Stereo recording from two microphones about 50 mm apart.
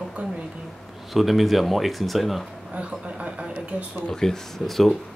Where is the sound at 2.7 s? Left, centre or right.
Right.